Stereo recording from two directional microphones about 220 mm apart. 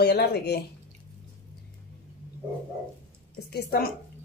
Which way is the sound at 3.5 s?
45° left (ahead or behind).